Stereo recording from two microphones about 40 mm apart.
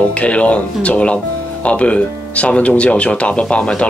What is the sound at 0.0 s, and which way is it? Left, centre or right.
Speech, left.